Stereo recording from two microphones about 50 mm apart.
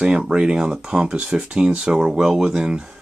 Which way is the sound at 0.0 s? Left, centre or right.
Centre.